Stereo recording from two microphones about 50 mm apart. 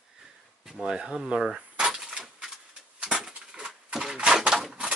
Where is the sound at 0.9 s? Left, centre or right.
Centre.